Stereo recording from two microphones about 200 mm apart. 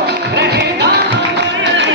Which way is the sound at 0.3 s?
60° right (ahead or behind).